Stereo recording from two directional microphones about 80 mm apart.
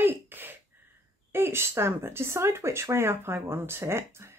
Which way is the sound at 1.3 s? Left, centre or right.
Right.